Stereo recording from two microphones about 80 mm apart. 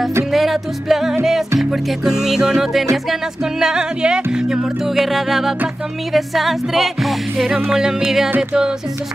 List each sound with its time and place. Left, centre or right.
0.3 s music: centre